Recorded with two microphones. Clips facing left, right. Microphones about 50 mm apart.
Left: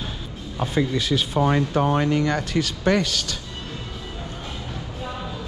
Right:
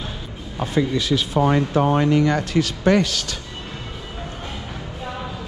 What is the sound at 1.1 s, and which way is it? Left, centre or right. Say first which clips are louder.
Speech: right 2 dB; right.